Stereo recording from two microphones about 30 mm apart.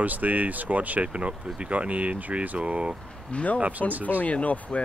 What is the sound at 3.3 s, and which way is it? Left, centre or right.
Speech, left.